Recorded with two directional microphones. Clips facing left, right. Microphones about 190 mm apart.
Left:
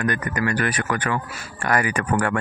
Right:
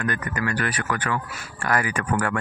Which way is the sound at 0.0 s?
15° left (ahead or behind).